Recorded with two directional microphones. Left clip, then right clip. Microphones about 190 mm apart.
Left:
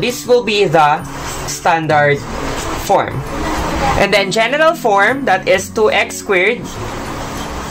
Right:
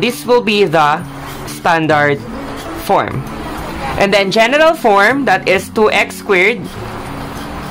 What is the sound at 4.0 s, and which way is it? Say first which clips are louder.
Speech: right 4 dB; 25° right (ahead or behind).